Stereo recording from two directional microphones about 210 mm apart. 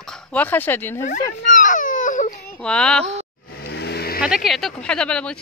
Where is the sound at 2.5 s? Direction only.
5° left (ahead or behind).